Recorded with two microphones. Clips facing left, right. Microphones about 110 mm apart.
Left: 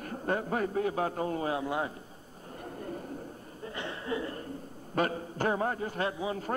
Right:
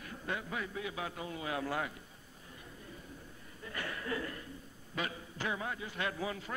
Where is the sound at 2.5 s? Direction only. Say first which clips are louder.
Left 13 dB; 55° left (ahead or behind).